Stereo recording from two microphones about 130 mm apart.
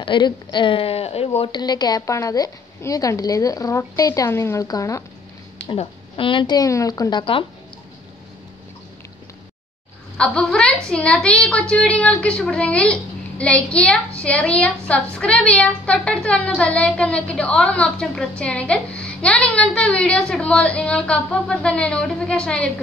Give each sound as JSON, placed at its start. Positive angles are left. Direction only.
{"t": 0.0, "sound": "speech", "side_deg": 35}
{"t": 1.6, "sound": "a woman's voice", "side_deg": 30}
{"t": 5.8, "sound": "a woman's voice", "side_deg": 40}
{"t": 10.1, "sound": "a woman's voice", "side_deg": 5}